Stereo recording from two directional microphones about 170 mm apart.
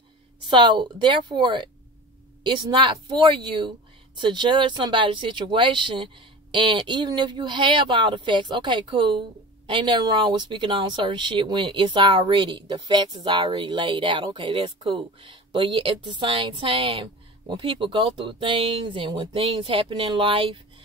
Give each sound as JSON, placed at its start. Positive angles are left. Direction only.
{"t": 0.5, "sound": "speech", "side_deg": -25}